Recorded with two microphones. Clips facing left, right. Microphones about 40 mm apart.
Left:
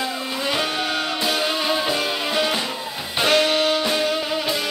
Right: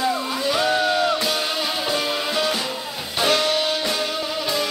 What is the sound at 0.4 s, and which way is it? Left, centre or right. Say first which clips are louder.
Music: right 2 dB; left.